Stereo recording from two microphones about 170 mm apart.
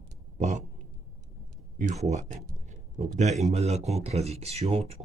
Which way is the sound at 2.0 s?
40° right (ahead or behind).